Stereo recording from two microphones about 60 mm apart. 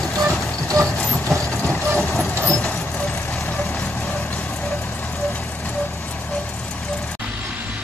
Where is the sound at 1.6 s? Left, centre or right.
Centre.